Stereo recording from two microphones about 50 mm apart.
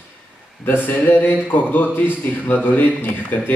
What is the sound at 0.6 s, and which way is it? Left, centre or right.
Speech, left.